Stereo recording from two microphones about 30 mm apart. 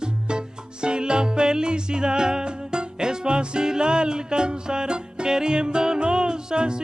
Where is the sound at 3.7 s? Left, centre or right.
Right.